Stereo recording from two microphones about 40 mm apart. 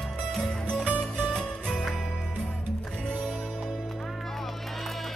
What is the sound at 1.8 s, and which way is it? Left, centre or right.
Music, centre.